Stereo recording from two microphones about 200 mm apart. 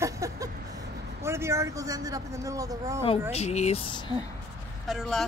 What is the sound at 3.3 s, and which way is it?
Speech, 30° left (ahead or behind).